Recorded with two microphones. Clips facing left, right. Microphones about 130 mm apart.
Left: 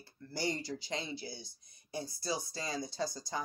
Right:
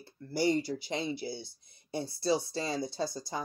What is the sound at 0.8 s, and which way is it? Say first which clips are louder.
Speech: right 6 dB; 25° right (ahead or behind).